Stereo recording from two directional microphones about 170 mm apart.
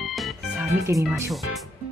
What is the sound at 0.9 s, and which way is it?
Speech, 15° right (ahead or behind).